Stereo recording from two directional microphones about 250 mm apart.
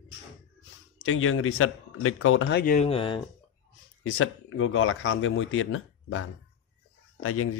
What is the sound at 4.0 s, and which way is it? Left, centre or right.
Speech, left.